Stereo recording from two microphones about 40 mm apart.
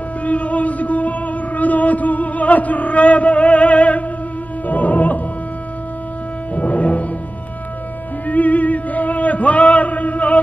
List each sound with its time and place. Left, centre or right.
0.2 s music: left
6.5 s music: left
8.3 s chant: left